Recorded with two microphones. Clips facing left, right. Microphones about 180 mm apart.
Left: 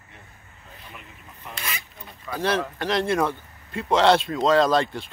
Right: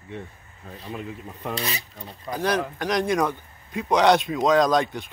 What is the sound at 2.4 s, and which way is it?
A man's voice, centre (ahead or behind).